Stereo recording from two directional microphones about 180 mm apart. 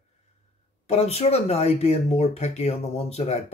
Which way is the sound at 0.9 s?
35° left (ahead or behind).